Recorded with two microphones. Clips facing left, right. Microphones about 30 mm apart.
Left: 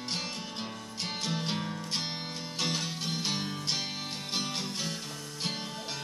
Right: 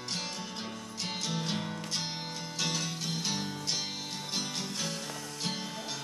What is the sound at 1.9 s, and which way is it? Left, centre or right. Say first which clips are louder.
Music: left 2 dB; left.